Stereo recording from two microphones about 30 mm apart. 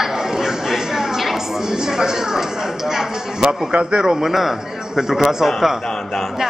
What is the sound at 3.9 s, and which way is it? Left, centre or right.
Speech, centre.